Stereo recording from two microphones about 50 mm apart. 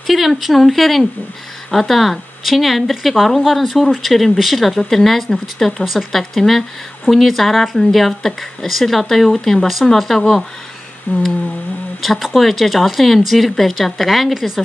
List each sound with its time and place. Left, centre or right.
0.0 s speech: centre
11.1 s a sound: left
12.0 s speech: centre